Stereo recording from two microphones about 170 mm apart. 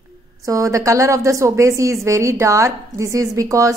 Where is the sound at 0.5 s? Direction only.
20° right (ahead or behind).